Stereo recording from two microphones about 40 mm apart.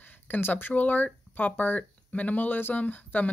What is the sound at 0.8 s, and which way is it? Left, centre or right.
Speech, left.